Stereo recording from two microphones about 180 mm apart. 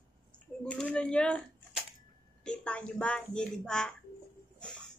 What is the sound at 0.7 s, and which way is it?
Speech, 5° left (ahead or behind).